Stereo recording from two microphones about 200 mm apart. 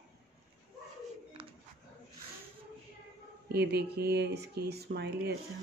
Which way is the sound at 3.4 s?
55° right (ahead or behind).